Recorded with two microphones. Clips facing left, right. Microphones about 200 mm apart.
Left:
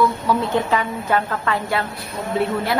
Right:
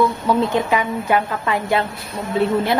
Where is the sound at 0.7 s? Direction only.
15° right (ahead or behind).